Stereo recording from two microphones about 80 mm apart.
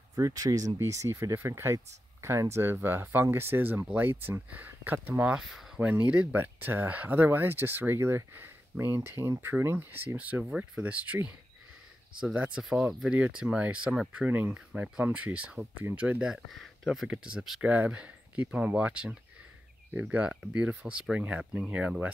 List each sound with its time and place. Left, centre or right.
0.1 s speech: right
5.2 s speech: centre
17.6 s speech: centre